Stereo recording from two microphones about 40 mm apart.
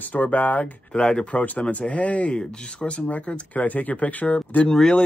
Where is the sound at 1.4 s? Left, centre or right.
Left.